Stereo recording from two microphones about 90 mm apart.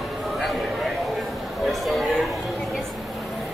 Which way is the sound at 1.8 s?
Centre (ahead or behind).